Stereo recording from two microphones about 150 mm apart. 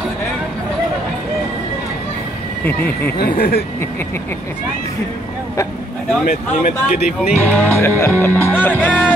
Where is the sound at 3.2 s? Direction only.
90° left.